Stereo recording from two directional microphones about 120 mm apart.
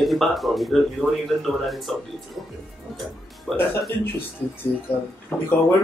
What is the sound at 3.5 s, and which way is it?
Speech, centre (ahead or behind).